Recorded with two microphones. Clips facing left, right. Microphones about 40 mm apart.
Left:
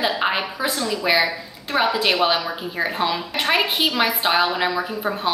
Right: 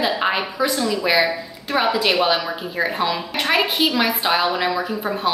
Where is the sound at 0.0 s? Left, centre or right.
Centre.